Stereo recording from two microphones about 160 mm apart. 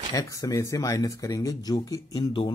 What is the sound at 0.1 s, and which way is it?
Speech, 20° left (ahead or behind).